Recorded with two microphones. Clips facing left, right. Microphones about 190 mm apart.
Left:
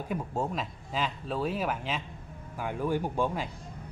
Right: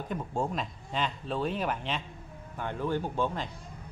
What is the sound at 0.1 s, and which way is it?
A man's voice, 5° left (ahead or behind).